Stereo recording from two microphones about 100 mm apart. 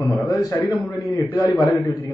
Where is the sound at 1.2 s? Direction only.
45° left (ahead or behind).